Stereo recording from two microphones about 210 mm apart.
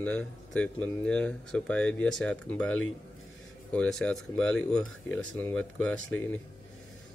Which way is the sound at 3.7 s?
5° left (ahead or behind).